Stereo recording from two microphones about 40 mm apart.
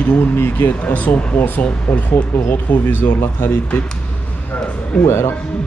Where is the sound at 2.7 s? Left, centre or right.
Left.